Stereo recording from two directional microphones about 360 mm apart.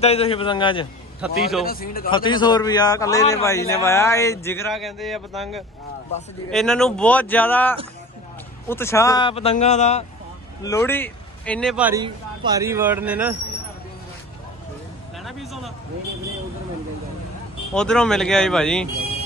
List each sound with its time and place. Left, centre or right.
0.0 s a man's voice: centre
1.2 s a man's voice: centre
1.7 s a man's voice: left
2.0 s a man's voice: centre
10.6 s a man's voice: centre
15.2 s a sound: centre
17.7 s a man's voice: centre